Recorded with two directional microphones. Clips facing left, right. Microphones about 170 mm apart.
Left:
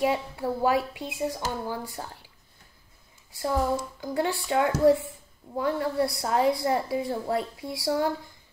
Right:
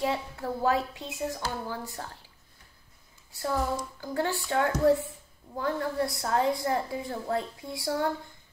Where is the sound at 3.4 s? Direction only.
10° left (ahead or behind).